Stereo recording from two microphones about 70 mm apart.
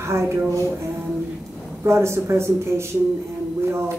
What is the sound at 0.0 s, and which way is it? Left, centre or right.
Speech, right.